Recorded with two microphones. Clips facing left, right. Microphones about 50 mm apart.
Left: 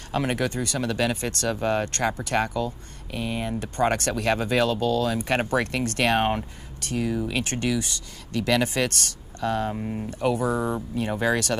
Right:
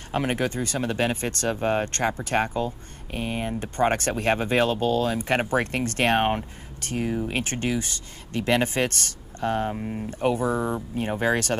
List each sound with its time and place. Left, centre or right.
0.1 s speech: right
9.7 s speech: centre
10.0 s speech: right